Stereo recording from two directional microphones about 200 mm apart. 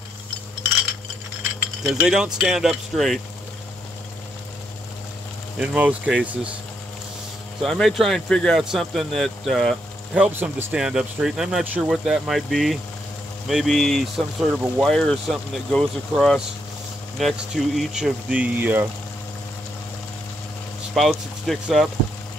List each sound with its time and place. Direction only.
1.8 s speech: 5° right (ahead or behind)
5.6 s speech: 5° right (ahead or behind)
7.6 s speech: centre (ahead or behind)
20.9 s speech: centre (ahead or behind)